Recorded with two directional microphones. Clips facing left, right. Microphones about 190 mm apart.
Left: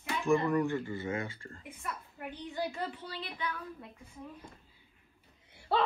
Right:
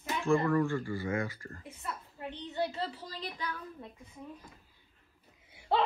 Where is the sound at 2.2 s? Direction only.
25° right (ahead or behind).